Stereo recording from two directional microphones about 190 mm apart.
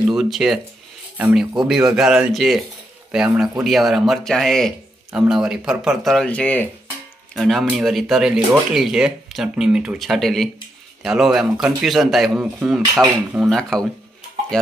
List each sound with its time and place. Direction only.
0.0 s speech: centre (ahead or behind)